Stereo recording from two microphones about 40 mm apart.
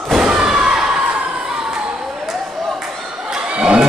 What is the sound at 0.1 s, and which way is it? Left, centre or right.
Slam, centre.